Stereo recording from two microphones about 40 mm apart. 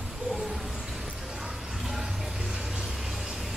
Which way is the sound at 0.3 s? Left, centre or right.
Centre.